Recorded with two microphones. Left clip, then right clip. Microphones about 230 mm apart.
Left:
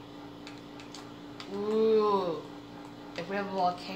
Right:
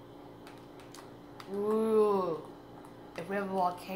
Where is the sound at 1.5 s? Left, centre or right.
Right.